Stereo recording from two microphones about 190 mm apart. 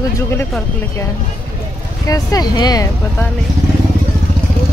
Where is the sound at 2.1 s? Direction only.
20° left (ahead or behind).